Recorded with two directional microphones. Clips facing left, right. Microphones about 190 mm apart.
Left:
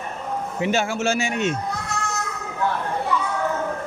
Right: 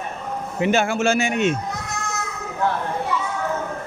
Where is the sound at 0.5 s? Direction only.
55° right (ahead or behind).